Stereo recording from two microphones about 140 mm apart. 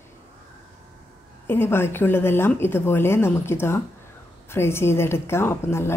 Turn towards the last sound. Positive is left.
turn(degrees=20)  # may be behind; listen again after turning